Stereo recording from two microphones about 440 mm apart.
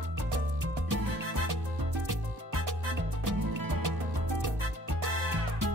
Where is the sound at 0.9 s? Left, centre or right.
Right.